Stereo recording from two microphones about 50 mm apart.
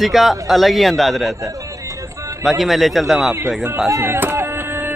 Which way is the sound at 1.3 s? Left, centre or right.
Right.